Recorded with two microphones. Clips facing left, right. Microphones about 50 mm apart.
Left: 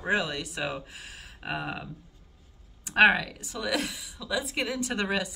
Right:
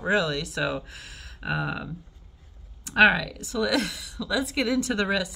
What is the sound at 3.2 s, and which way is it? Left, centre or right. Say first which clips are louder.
A woman's voice: right 6 dB; left.